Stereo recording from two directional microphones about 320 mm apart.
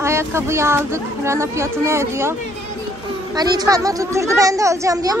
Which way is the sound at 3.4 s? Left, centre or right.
Centre.